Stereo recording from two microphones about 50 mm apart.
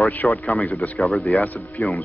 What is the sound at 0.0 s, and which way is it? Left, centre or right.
Speech, left.